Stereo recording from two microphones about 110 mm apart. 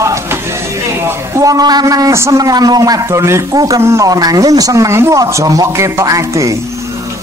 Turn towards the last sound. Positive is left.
turn(degrees=-30)  # may be behind; listen again after turning